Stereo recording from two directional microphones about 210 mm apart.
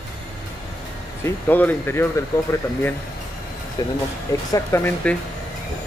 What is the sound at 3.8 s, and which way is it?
Speech, 20° left (ahead or behind).